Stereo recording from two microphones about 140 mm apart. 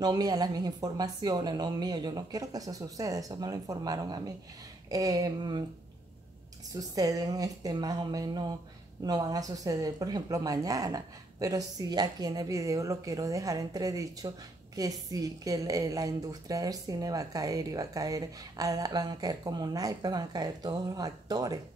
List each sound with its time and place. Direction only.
0.0 s a woman's voice: 30° right (ahead or behind)
6.7 s a woman's voice: 25° right (ahead or behind)